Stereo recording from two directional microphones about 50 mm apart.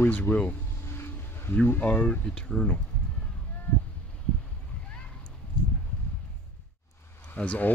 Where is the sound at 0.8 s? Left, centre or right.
Left.